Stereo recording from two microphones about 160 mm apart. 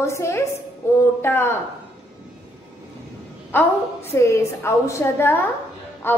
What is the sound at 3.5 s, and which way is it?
Female singing, 15° left (ahead or behind).